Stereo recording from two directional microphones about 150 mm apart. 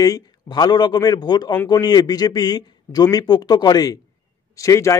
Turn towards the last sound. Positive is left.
turn(degrees=20)  # may be behind; listen again after turning